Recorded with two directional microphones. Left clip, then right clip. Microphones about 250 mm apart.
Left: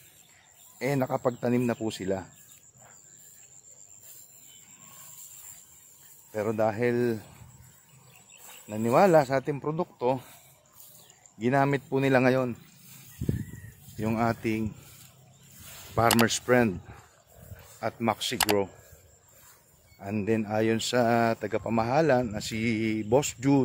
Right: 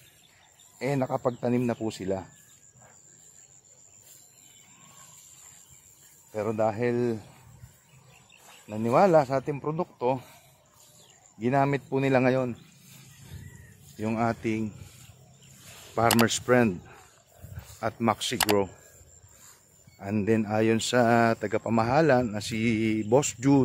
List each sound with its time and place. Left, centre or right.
0.7 s speech: centre
6.3 s speech: centre
8.5 s cricket: centre
8.8 s speech: centre
11.3 s speech: centre
15.6 s a sound: left
15.9 s speech: centre
17.7 s speech: centre
20.0 s speech: centre